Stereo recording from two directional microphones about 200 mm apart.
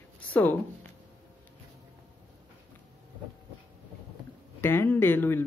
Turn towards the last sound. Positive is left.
turn(degrees=10)  # may be behind; listen again after turning